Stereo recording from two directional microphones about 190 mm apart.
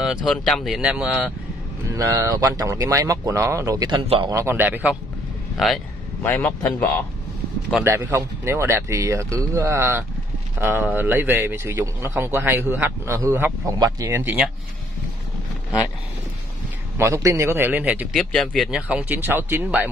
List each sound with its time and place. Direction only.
0.0 s speech: centre (ahead or behind)
1.9 s speech: 20° right (ahead or behind); by 7.0 s 10° left (ahead or behind)
7.7 s speech: 15° right (ahead or behind)
17.0 s speech: 15° right (ahead or behind)
18.1 s speech: 5° left (ahead or behind)